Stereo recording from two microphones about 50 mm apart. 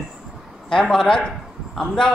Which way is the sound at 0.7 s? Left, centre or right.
Centre.